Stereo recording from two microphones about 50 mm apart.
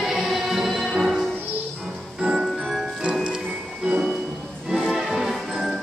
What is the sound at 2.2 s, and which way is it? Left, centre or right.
Music, centre.